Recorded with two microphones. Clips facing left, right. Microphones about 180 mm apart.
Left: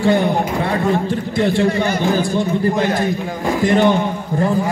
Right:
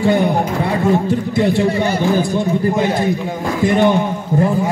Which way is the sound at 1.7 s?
30° right (ahead or behind).